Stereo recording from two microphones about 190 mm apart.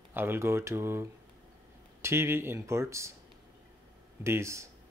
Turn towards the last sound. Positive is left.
turn(degrees=-15)  # may be behind; listen again after turning